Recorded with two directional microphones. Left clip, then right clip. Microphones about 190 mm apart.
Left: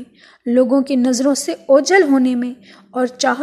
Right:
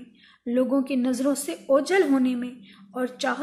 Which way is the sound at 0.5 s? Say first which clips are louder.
Left 9 dB; 40° left (ahead or behind).